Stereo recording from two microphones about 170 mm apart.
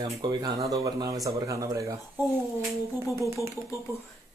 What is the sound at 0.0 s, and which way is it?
Speech, 25° right (ahead or behind).